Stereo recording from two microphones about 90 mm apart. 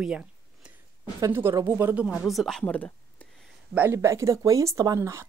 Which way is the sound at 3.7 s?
25° right (ahead or behind).